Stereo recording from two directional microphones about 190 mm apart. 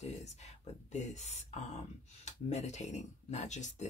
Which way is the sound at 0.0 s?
35° left (ahead or behind).